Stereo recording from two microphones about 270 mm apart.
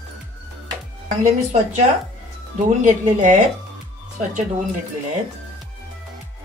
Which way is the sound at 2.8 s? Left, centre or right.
Right.